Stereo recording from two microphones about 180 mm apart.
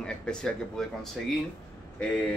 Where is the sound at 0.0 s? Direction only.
5° left (ahead or behind).